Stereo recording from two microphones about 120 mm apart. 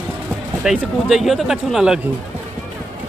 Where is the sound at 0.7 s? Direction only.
5° right (ahead or behind).